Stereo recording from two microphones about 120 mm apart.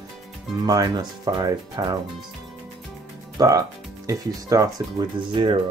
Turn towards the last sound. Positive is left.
turn(degrees=-45)  # may be behind; listen again after turning